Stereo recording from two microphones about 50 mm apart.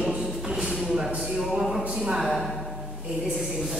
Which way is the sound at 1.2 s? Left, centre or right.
Centre.